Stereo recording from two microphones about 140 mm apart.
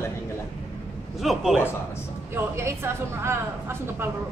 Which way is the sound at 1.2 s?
Centre (ahead or behind).